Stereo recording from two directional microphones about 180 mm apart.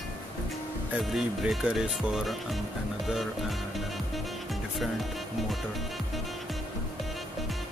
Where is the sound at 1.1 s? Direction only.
Centre (ahead or behind).